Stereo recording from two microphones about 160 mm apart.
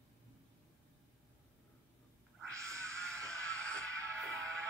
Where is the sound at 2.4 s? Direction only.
20° right (ahead or behind).